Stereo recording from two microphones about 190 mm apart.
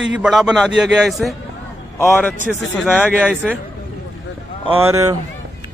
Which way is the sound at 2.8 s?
5° right (ahead or behind).